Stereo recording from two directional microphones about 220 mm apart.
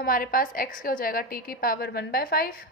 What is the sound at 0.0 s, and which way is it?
A woman's voice, 40° left (ahead or behind).